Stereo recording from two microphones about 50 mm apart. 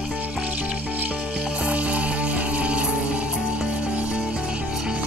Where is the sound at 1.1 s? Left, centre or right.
Centre.